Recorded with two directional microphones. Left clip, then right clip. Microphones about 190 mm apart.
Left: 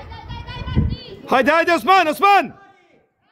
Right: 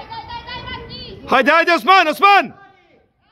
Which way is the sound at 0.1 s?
90° left.